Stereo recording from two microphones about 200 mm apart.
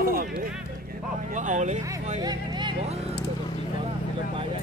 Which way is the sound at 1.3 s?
40° right (ahead or behind).